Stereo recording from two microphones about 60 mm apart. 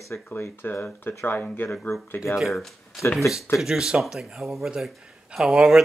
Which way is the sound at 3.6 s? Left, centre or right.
Centre.